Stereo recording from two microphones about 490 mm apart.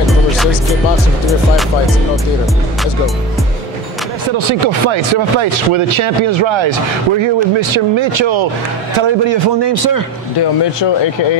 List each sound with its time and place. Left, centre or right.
0.0 s music: centre
4.4 s a man's voice: right